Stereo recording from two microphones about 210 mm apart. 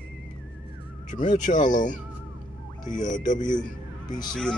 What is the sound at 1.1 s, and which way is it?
Speech, 35° left (ahead or behind).